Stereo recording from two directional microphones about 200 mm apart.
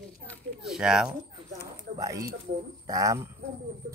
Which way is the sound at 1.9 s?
15° right (ahead or behind).